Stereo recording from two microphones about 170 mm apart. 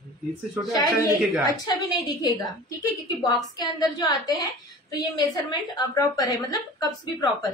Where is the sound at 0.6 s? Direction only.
5° right (ahead or behind).